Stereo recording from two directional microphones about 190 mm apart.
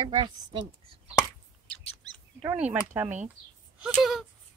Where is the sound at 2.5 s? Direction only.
10° right (ahead or behind).